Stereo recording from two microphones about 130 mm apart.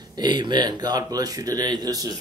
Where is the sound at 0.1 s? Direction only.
35° right (ahead or behind).